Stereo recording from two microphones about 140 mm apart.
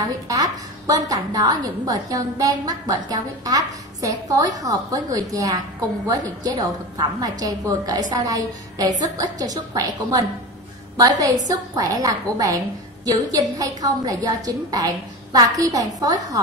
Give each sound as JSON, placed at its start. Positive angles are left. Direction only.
{"t": 0.0, "sound": "a woman's voice", "side_deg": -25}